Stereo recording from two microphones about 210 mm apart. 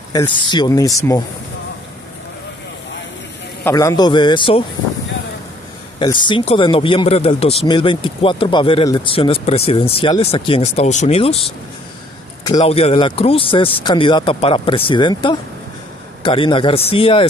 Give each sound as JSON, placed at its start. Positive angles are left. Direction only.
{"t": 0.1, "sound": "speech", "side_deg": 20}
{"t": 3.6, "sound": "speech", "side_deg": 15}
{"t": 5.9, "sound": "speech", "side_deg": 20}
{"t": 12.5, "sound": "speech", "side_deg": 30}